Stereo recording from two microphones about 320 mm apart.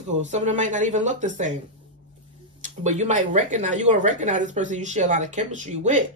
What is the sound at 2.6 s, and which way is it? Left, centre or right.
A woman's voice, right.